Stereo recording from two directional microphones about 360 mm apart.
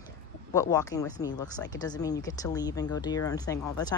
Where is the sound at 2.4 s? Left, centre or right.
Centre.